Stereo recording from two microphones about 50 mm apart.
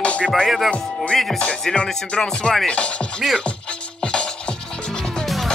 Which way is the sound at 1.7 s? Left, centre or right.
Centre.